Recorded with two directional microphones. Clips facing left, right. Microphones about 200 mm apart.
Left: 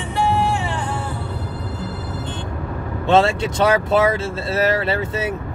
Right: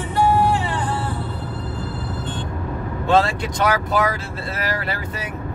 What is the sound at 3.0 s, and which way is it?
Speech, 25° left (ahead or behind).